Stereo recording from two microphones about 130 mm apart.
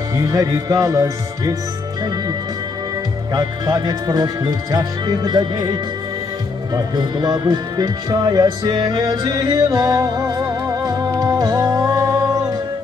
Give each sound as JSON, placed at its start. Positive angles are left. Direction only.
{"t": 0.1, "sound": "speech", "side_deg": -25}
{"t": 3.3, "sound": "speech", "side_deg": -30}
{"t": 6.7, "sound": "speech", "side_deg": -30}